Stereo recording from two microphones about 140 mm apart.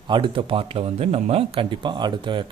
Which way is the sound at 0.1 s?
35° right (ahead or behind).